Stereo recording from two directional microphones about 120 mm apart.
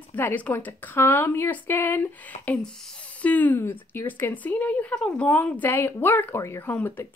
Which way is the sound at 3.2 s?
15° left (ahead or behind).